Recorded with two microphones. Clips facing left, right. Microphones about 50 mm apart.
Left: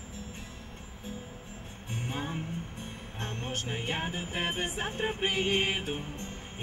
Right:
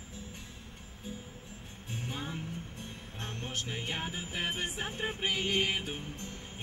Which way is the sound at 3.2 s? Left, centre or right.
Left.